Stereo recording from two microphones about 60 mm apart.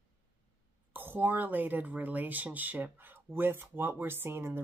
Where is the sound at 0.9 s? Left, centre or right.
Right.